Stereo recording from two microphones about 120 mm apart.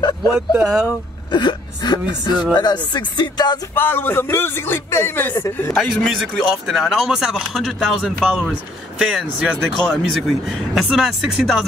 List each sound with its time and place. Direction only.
0.3 s speech: 10° right (ahead or behind)
1.3 s speech: 40° left (ahead or behind)
3.7 s speech: 15° left (ahead or behind)
5.9 s a man's voice: centre (ahead or behind)